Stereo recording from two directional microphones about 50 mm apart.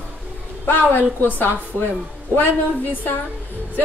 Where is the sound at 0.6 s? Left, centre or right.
Left.